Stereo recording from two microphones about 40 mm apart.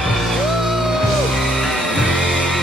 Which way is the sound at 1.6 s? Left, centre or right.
Centre.